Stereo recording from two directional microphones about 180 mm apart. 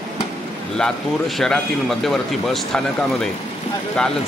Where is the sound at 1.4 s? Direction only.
Centre (ahead or behind).